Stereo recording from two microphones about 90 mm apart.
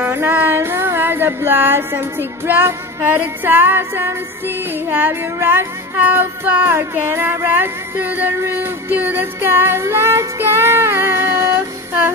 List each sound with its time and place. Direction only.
0.0 s music: 25° right (ahead or behind)